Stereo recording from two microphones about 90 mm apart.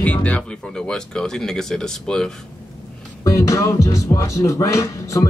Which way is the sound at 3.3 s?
35° left (ahead or behind).